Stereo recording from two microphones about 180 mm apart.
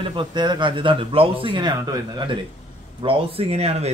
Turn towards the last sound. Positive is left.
turn(degrees=-35)  # may be behind; listen again after turning